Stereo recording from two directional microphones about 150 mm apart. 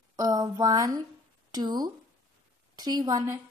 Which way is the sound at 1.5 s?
25° right (ahead or behind).